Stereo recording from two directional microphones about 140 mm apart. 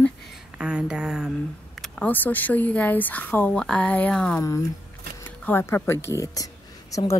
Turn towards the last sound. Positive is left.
turn(degrees=25)  # may be behind; listen again after turning